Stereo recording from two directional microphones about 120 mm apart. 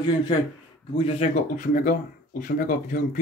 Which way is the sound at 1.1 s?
80° left.